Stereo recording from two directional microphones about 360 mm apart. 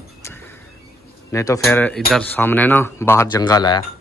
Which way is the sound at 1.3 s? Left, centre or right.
Centre.